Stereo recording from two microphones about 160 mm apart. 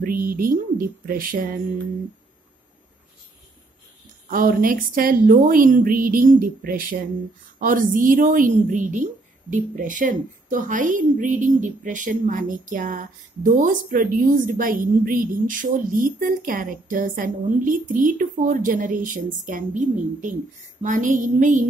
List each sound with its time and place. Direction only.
0.0 s a woman's voice: 60° right (ahead or behind)
4.3 s a woman's voice: 60° right (ahead or behind)
20.8 s a sound: 55° right (ahead or behind)